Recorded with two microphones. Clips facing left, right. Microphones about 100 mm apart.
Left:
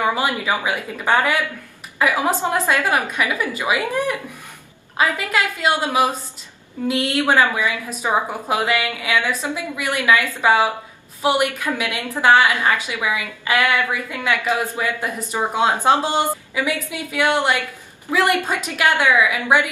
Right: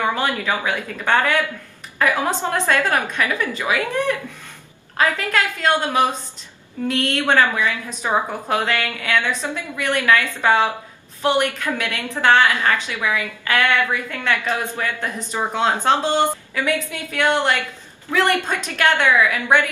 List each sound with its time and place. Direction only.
0.0 s a woman's voice: 10° left (ahead or behind)